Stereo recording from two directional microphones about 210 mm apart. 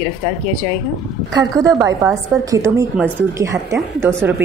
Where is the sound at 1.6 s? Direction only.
15° right (ahead or behind).